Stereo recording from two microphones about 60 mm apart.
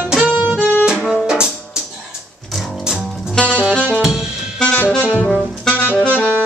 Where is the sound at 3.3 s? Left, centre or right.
Left.